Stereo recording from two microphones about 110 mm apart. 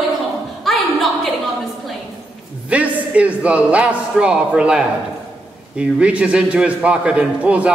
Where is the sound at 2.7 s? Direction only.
10° right (ahead or behind).